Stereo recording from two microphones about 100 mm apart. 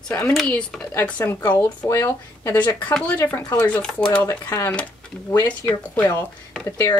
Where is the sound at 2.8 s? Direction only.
15° left (ahead or behind).